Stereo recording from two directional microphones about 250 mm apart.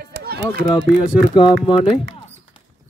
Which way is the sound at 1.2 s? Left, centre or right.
Centre.